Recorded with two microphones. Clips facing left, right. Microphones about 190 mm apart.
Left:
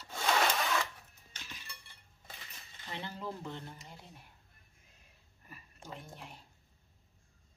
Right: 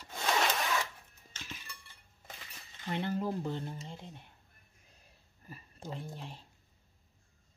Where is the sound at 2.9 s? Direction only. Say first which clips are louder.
Right 8 dB; 55° right (ahead or behind).